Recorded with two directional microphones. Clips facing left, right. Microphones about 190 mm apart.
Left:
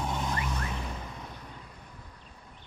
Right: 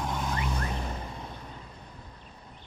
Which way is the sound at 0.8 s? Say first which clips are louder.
Right 2 dB; 40° right (ahead or behind).